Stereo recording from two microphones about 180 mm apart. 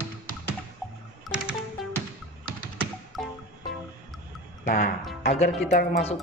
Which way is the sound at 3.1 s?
Centre (ahead or behind).